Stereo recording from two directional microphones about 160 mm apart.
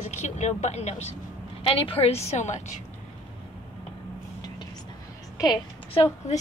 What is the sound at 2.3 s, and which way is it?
Speech, 45° left (ahead or behind).